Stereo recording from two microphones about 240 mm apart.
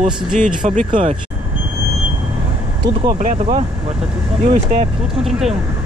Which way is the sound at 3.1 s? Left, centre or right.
Right.